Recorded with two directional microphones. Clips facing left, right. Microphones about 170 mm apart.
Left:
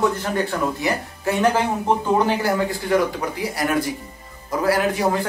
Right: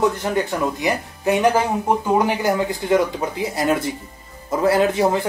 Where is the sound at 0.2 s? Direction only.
15° right (ahead or behind).